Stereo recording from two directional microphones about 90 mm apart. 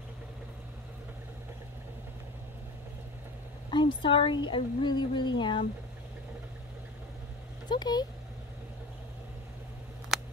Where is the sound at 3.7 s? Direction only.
65° left (ahead or behind).